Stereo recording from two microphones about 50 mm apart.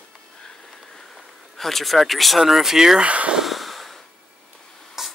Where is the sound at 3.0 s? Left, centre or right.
Right.